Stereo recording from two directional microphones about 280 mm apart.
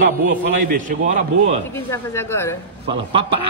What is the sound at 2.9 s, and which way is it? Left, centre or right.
Speech, centre.